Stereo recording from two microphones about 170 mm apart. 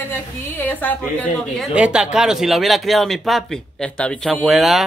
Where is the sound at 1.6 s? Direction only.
5° right (ahead or behind).